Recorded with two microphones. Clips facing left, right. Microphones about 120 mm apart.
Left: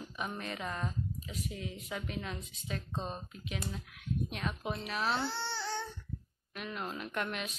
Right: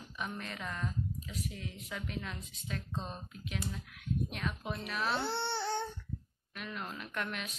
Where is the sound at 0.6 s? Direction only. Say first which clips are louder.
Left 1 dB; 30° left (ahead or behind).